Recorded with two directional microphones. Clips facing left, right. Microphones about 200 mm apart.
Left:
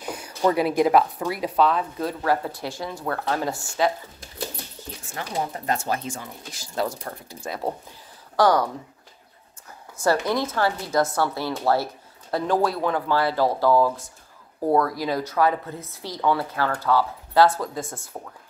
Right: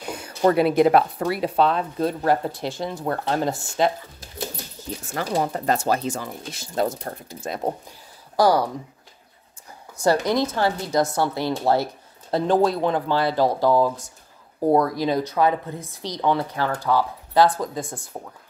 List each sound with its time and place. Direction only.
0.0 s a sound: 25° right (ahead or behind)
0.6 s speech: 25° right (ahead or behind)
0.9 s speech: 65° right (ahead or behind)
1.4 s speech: 25° right (ahead or behind)
5.1 s speech: 40° right (ahead or behind)
6.5 s speech: 25° right (ahead or behind)
8.4 s a woman's voice: 10° right (ahead or behind)
10.2 s a woman's voice: 15° right (ahead or behind)